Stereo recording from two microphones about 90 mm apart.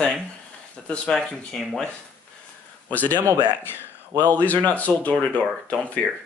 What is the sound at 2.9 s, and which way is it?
Speech, 20° left (ahead or behind).